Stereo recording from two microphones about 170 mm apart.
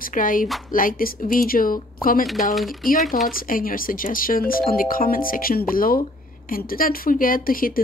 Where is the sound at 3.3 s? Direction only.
55° left (ahead or behind).